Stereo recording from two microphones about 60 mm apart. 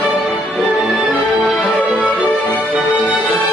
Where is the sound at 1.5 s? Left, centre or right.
Left.